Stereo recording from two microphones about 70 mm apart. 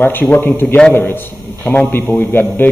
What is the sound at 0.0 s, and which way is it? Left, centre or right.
A man's voice, left.